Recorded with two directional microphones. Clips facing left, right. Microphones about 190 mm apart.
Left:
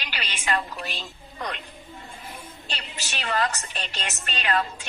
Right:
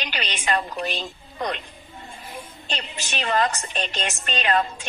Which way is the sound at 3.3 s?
20° right (ahead or behind).